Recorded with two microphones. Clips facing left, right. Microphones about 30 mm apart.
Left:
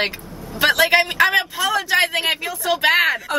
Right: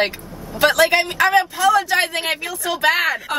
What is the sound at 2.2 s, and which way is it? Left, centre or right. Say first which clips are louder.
Speech: left 2 dB; centre.